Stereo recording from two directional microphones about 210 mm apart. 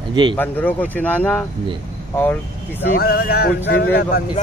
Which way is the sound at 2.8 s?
45° left (ahead or behind).